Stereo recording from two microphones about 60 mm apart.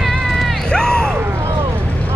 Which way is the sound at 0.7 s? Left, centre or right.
Centre.